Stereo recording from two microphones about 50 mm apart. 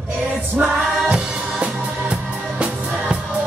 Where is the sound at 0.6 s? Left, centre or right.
Right.